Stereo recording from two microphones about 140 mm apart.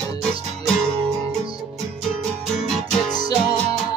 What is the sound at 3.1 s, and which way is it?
Music, 30° left (ahead or behind).